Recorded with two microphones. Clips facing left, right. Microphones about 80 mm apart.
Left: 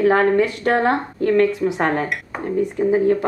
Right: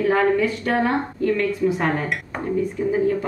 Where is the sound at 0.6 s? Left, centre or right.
Left.